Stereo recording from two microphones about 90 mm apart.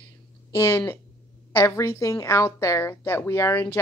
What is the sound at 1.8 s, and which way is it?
A woman's voice, 35° left (ahead or behind).